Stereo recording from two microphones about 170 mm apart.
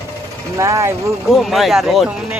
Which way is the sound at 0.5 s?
15° right (ahead or behind).